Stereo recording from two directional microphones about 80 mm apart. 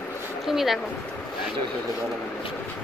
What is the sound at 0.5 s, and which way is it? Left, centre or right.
Speech, centre.